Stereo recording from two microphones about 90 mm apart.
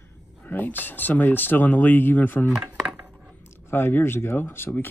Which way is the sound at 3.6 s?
25° left (ahead or behind).